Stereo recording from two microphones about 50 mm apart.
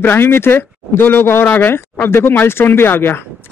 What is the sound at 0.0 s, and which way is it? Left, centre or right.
Speech, left.